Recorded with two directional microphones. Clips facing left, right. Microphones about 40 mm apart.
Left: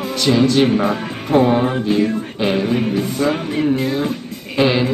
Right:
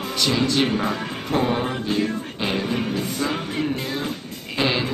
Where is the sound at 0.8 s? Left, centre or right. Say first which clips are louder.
Left 6 dB; left.